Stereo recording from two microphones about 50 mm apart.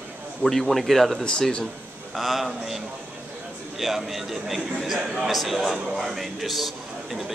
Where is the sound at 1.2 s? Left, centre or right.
Centre.